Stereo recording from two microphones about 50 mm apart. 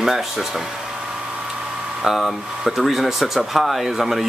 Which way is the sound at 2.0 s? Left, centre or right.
Centre.